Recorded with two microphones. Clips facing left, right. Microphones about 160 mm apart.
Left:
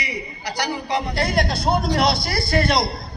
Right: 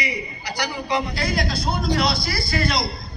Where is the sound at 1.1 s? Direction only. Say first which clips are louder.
Left 3 dB; 60° left (ahead or behind).